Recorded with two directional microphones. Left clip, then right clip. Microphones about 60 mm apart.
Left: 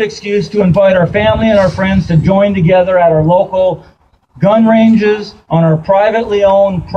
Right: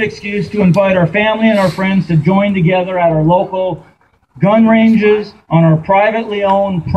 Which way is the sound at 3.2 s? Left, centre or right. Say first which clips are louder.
Left 3 dB; left.